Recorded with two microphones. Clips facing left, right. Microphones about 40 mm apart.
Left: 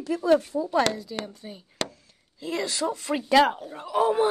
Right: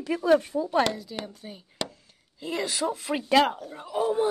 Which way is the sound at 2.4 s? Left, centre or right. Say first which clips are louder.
Left 1 dB; centre.